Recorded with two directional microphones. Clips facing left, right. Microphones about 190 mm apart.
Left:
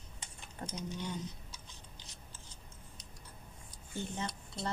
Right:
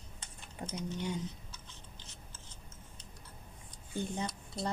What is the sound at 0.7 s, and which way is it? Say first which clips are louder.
Speech: right 3 dB; 10° right (ahead or behind).